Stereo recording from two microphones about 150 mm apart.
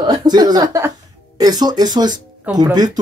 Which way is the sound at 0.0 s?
30° right (ahead or behind).